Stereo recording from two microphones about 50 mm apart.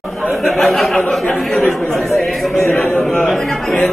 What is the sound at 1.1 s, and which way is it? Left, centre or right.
Speech, centre.